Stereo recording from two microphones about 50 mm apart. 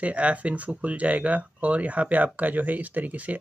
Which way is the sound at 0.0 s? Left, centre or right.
Right.